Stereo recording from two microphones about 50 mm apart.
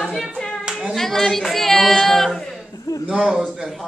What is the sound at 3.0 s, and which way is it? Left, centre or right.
Speech, centre.